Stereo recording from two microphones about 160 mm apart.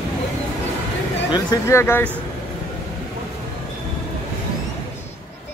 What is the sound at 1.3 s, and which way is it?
Speech, 20° left (ahead or behind).